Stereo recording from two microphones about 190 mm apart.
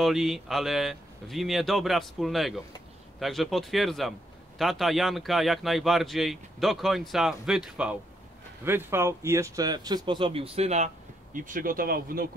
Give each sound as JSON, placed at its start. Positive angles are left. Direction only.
{"t": 0.0, "sound": "a man's voice", "side_deg": 0}
{"t": 11.3, "sound": "speech", "side_deg": -45}